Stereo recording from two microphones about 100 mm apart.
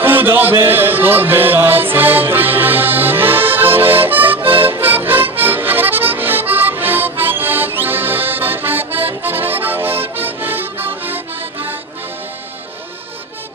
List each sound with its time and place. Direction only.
0.0 s music: 20° right (ahead or behind)
5.4 s accordion: 20° right (ahead or behind)